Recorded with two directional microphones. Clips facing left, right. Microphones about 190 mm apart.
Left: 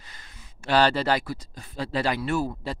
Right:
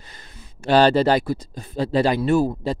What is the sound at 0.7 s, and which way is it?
Speech, 25° right (ahead or behind).